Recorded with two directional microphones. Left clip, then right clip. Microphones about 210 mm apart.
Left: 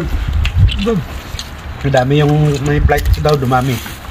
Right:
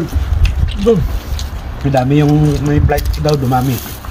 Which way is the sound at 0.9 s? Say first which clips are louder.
Right 6 dB; 20° right (ahead or behind).